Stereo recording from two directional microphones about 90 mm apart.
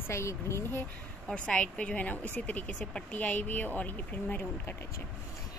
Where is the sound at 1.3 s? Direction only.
15° left (ahead or behind).